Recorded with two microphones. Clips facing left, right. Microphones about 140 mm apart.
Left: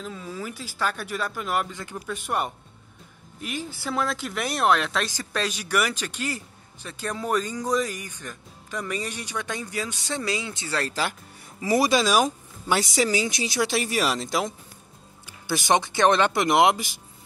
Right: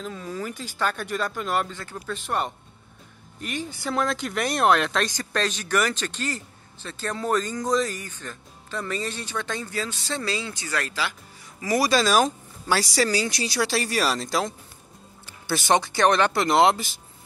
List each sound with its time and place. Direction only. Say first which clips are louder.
0.0 s speech: right 2 dB; centre (ahead or behind); by 10.9 s 25° left (ahead or behind)
10.9 s speech: left 2 dB; 45° left (ahead or behind)
11.6 s speech: left 1 dB; 25° left (ahead or behind)
12.0 s speech: right 1 dB; 10° left (ahead or behind)